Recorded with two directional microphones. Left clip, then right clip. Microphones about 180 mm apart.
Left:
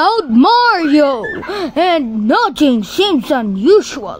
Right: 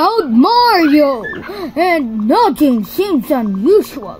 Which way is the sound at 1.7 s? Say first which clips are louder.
Even; 85° left.